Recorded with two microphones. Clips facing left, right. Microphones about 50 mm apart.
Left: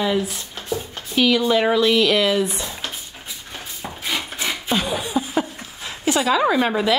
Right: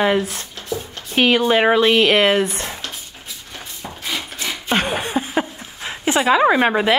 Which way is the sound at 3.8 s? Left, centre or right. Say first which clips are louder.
Left 1 dB; centre.